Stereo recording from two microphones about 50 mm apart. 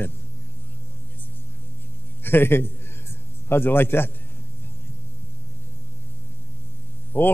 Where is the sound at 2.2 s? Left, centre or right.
Left.